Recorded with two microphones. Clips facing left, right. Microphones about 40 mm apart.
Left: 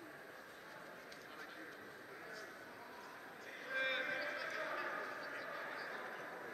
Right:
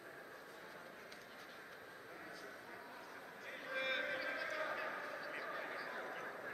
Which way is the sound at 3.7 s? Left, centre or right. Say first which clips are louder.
Left 1 dB; centre.